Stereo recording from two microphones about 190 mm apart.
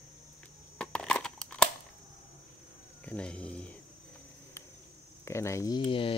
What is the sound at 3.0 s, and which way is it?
Speech, 5° left (ahead or behind).